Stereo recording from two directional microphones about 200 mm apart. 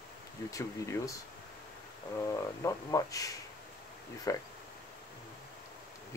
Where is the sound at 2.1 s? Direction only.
15° left (ahead or behind).